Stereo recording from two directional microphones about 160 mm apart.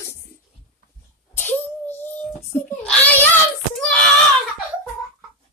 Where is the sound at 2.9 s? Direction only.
10° left (ahead or behind).